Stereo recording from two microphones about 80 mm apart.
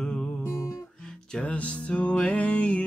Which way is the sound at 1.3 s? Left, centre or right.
Centre.